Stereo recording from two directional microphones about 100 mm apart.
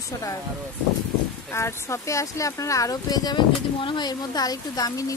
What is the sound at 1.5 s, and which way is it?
Speech, 30° left (ahead or behind).